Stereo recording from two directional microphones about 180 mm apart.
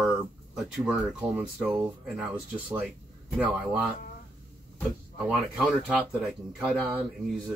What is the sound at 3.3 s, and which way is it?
Speech, 5° right (ahead or behind).